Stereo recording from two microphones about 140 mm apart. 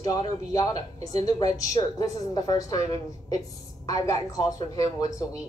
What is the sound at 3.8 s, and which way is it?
Speech, 25° left (ahead or behind).